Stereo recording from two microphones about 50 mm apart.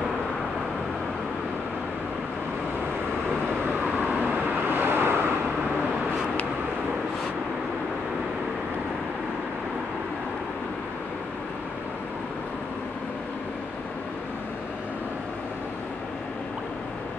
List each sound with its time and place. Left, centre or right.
3.9 s vehicle: right